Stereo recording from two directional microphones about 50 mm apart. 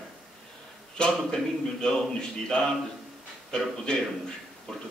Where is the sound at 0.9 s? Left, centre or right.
Centre.